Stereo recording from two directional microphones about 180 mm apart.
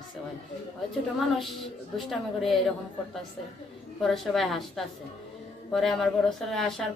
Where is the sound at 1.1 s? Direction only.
Centre (ahead or behind).